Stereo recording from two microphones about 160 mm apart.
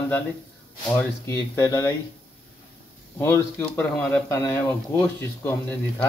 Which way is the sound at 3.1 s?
15° left (ahead or behind).